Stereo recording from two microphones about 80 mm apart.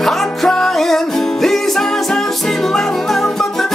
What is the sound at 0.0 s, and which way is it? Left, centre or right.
Music, centre.